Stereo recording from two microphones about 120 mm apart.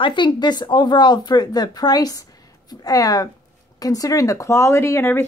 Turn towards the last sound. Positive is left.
turn(degrees=20)  # may be behind; listen again after turning